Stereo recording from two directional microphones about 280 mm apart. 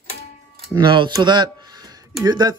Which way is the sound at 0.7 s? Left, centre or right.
Centre.